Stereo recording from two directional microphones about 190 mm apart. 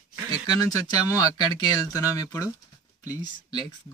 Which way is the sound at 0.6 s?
20° left (ahead or behind).